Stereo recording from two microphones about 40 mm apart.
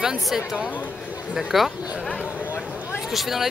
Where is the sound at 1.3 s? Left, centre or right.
Centre.